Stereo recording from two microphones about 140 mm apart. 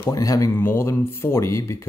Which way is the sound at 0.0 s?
25° left (ahead or behind).